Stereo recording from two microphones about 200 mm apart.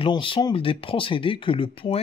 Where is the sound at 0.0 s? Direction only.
25° left (ahead or behind).